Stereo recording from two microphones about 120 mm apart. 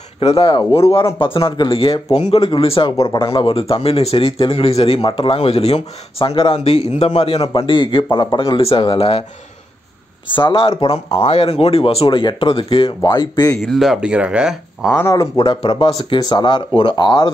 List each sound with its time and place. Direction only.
0.2 s a man's voice: 60° left (ahead or behind)
1.2 s speech: 45° left (ahead or behind)
2.1 s a man's voice: 60° left (ahead or behind)
7.5 s speech: 45° left (ahead or behind)
8.5 s speech: 50° left (ahead or behind)
10.3 s speech: 45° left (ahead or behind)
13.0 s speech: 35° left (ahead or behind)
13.6 s speech: centre (ahead or behind)
15.0 s speech: 25° left (ahead or behind)
15.3 s speech: 40° left (ahead or behind)